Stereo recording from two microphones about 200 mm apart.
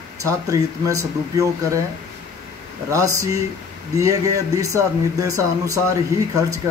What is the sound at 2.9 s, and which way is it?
Speech, 15° right (ahead or behind).